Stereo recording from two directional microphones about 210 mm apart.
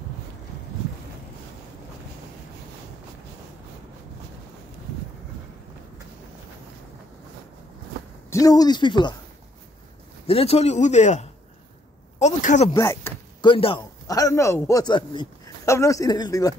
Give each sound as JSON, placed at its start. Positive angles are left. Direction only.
{"t": 8.3, "sound": "speech", "side_deg": 15}
{"t": 10.2, "sound": "a man's voice", "side_deg": 30}
{"t": 12.7, "sound": "speech", "side_deg": 15}